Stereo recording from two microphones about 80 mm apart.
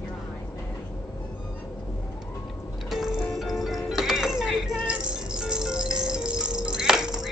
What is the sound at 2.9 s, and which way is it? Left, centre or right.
Music, centre.